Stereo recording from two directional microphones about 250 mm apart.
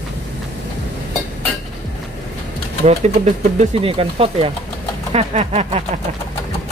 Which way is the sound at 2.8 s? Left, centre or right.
Right.